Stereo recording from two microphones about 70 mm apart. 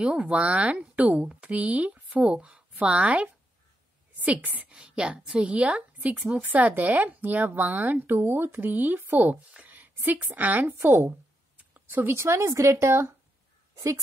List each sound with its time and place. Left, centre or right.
0.0 s a woman's voice: centre; by 13.1 s right